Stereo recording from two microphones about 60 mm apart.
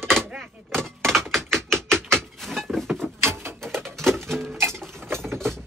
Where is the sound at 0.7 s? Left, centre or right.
Centre.